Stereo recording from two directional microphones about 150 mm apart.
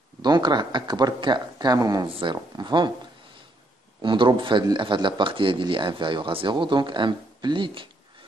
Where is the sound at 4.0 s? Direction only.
30° right (ahead or behind).